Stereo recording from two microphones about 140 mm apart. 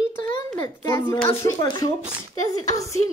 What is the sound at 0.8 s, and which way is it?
Speech, 20° left (ahead or behind).